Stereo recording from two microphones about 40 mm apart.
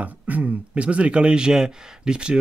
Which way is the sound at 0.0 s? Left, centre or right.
Right.